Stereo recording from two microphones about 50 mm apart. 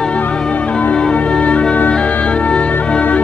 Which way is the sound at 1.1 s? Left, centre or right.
Left.